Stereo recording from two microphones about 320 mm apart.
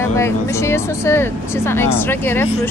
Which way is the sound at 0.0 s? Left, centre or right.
Centre.